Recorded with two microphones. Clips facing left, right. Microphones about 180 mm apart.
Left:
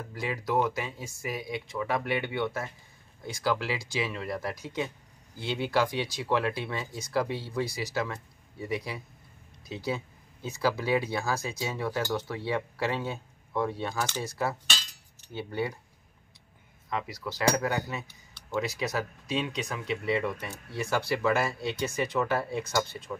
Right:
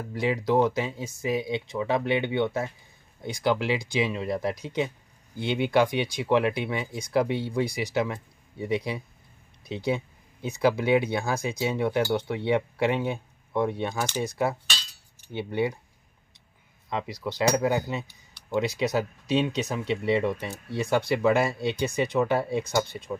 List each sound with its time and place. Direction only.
0.1 s speech: 25° right (ahead or behind)
16.9 s speech: 25° right (ahead or behind)